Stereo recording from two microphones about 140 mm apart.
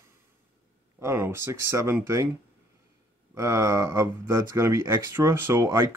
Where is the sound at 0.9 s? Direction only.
20° right (ahead or behind).